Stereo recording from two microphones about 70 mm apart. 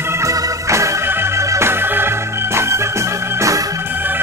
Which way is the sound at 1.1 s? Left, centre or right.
Right.